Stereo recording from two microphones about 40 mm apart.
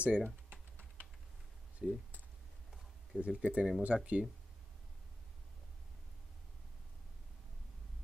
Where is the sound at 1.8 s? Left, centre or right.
Centre.